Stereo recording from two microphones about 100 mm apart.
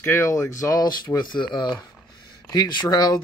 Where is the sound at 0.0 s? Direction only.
30° left (ahead or behind).